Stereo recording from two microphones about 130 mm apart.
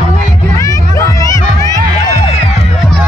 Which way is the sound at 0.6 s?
25° left (ahead or behind).